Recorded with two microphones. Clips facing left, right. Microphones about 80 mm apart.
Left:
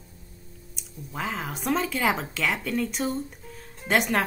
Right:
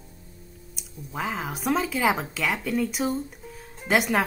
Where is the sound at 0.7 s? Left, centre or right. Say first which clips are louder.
Right 2 dB; centre.